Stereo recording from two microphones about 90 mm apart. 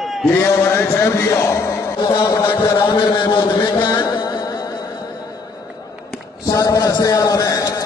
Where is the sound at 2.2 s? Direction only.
45° left (ahead or behind).